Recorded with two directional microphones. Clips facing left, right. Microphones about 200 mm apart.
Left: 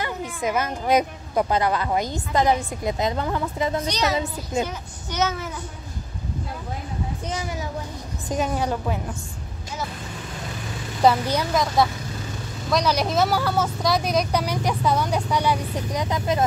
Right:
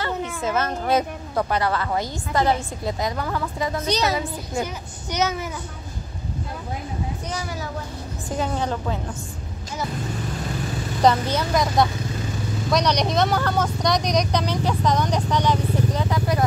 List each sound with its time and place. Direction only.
0.4 s a woman's voice: 15° left (ahead or behind)
3.8 s a child's voice: 30° right (ahead or behind)
4.1 s a woman's voice: 25° left (ahead or behind)
5.1 s a child's voice: 10° right (ahead or behind)
8.3 s speech: 15° left (ahead or behind)
11.0 s speech: 10° left (ahead or behind)